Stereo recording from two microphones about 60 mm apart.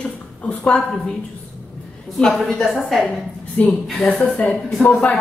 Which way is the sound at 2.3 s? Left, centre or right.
Centre.